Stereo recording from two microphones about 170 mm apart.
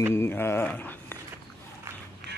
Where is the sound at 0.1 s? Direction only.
15° left (ahead or behind).